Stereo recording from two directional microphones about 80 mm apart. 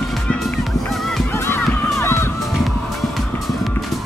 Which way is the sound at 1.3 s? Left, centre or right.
Left.